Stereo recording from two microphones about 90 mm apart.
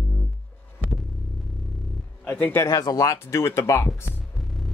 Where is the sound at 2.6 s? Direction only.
45° left (ahead or behind).